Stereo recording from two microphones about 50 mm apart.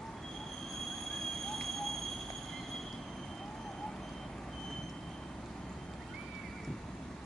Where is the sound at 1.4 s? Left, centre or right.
Centre.